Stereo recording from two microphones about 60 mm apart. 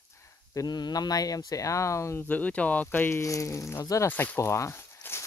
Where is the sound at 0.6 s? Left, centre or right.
Left.